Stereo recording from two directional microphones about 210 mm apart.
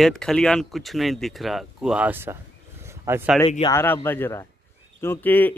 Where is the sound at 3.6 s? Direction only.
10° left (ahead or behind).